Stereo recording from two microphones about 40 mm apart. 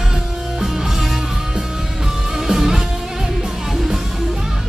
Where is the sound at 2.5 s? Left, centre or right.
Centre.